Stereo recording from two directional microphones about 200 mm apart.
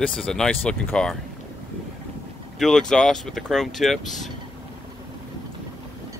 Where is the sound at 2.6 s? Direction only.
Centre (ahead or behind).